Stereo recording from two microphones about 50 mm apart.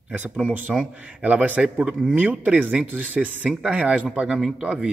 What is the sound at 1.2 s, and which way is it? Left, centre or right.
Speech, right.